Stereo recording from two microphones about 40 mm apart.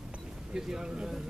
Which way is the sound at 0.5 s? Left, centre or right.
Centre.